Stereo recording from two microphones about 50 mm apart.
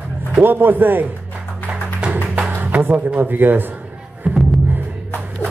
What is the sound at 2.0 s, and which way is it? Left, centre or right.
Music, centre.